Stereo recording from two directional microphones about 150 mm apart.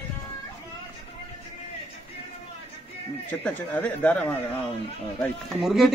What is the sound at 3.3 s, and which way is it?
Speech, 10° left (ahead or behind).